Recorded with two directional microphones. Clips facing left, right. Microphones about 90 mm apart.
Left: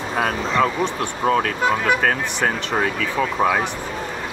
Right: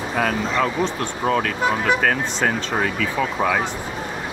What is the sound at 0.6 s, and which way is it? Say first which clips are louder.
Speech: left 4 dB; 20° left (ahead or behind).